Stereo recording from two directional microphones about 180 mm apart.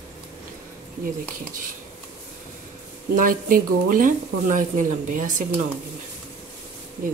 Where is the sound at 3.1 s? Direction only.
50° right (ahead or behind).